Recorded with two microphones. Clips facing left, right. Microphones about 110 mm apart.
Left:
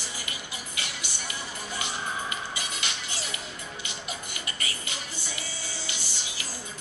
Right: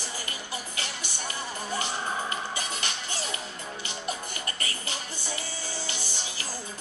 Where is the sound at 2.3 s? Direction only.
40° right (ahead or behind).